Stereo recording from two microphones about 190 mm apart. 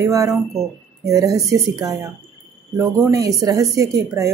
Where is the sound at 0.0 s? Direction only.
15° right (ahead or behind).